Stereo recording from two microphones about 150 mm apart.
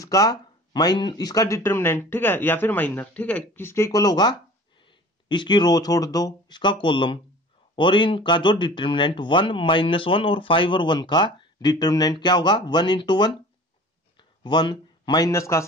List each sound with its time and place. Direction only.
0.0 s a man's voice: 25° left (ahead or behind)